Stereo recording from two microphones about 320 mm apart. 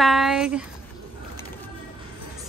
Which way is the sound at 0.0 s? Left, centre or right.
Centre.